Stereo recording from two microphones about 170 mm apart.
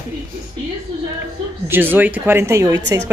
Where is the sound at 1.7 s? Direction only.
10° right (ahead or behind).